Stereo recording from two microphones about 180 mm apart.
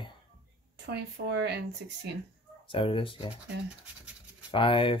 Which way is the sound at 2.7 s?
30° left (ahead or behind).